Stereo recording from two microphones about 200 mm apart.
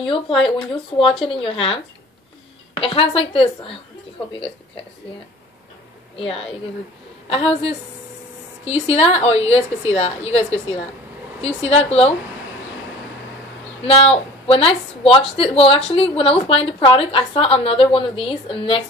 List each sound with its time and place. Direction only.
0.4 s speech: 25° left (ahead or behind)
2.8 s speech: 25° left (ahead or behind)
6.1 s a woman's voice: 30° left (ahead or behind)
13.8 s speech: 30° left (ahead or behind)